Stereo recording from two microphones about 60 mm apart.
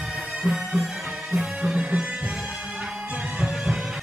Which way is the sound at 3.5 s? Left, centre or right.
Centre.